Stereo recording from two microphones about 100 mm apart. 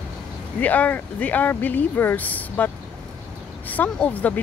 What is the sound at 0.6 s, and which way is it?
Speech, 15° left (ahead or behind).